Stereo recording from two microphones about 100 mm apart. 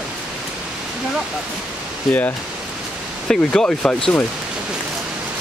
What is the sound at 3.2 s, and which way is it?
Speech, 10° left (ahead or behind).